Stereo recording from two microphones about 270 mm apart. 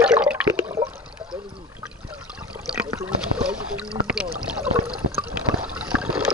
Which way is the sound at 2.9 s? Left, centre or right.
Centre.